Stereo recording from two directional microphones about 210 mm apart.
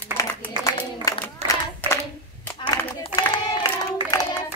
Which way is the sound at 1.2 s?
15° left (ahead or behind).